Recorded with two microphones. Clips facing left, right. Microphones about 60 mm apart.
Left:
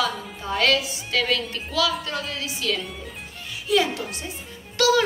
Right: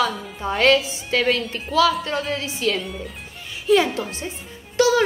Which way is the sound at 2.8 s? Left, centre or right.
Centre.